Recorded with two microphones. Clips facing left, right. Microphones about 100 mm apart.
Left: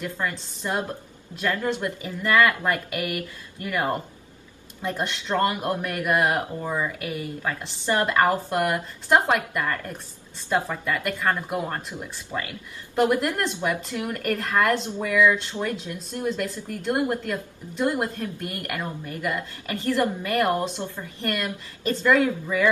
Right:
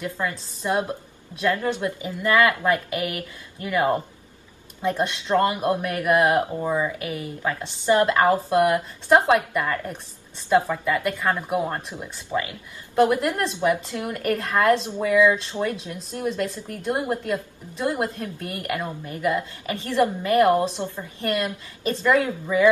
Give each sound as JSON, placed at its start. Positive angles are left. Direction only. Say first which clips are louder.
{"t": 0.7, "sound": "a woman's voice", "louder": "right 4 dB", "side_deg": -15}